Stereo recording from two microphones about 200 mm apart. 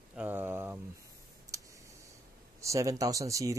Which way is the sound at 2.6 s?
15° right (ahead or behind).